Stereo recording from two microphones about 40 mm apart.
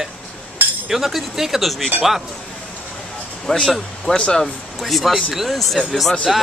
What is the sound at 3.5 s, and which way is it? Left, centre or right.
Speech, centre.